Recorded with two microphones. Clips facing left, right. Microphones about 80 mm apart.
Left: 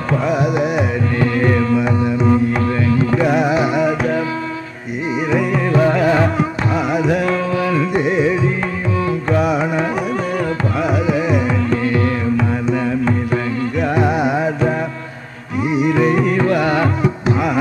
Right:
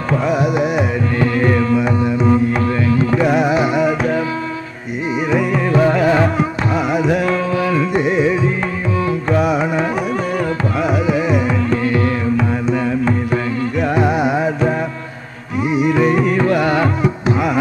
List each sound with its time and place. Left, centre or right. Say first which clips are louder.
1.2 s music: even; centre
3.2 s music: right 1 dB; right
5.3 s music: right 1 dB; right
6.8 s music: right 1 dB; right
7.2 s music: right 1 dB; centre
9.4 s carnatic music: right 1 dB; right
13.0 s carnatic music: even; centre
14.0 s music: right 1 dB; right
16.2 s music: right 1 dB; centre